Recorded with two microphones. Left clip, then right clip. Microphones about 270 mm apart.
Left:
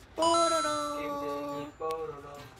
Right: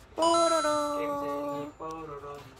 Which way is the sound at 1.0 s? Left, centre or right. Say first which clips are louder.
Right 3 dB; centre.